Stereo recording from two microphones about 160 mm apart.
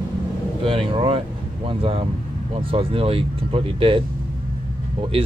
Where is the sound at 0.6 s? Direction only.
35° right (ahead or behind).